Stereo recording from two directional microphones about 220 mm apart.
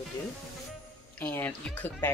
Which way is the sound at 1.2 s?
10° left (ahead or behind).